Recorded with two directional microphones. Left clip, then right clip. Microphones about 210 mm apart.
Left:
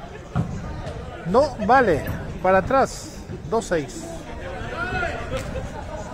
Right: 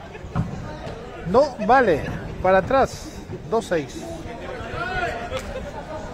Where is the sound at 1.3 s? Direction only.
5° left (ahead or behind).